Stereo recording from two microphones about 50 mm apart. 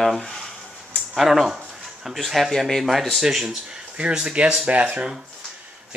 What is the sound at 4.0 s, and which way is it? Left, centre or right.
Speech, centre.